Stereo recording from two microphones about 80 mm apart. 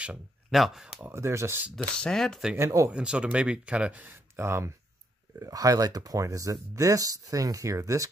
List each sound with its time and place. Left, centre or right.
0.5 s speech: centre
1.1 s speech: right
2.0 s speech: centre
2.5 s speech: right
2.9 s speech: centre; by 4.7 s right
5.4 s speech: right